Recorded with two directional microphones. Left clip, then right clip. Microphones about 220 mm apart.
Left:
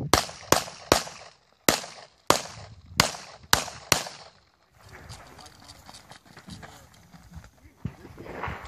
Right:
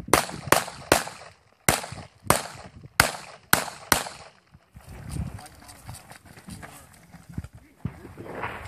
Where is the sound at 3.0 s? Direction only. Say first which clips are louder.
Right 2 dB; centre (ahead or behind).